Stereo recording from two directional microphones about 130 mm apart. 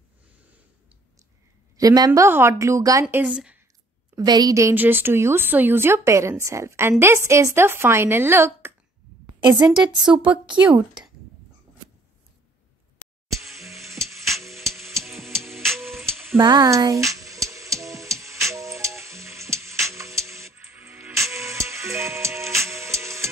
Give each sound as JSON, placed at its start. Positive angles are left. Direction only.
{"t": 1.8, "sound": "speech", "side_deg": -30}
{"t": 4.1, "sound": "speech", "side_deg": -30}
{"t": 4.7, "sound": "speech", "side_deg": -15}
{"t": 9.8, "sound": "a woman's voice", "side_deg": -35}
{"t": 10.6, "sound": "speech", "side_deg": -10}
{"t": 13.4, "sound": "music", "side_deg": 0}
{"t": 15.9, "sound": "a sound", "side_deg": 0}
{"t": 16.3, "sound": "a sound", "side_deg": -30}
{"t": 20.3, "sound": "music", "side_deg": -20}
{"t": 21.5, "sound": "tick-tock", "side_deg": -20}